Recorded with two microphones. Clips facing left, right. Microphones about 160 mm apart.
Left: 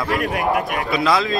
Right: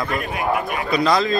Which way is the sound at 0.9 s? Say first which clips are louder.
Right 2 dB; centre (ahead or behind).